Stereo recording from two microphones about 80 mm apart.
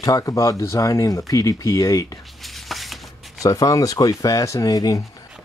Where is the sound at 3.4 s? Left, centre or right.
Left.